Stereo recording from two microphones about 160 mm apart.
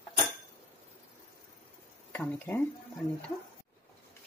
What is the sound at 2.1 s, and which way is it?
Speech, 10° left (ahead or behind).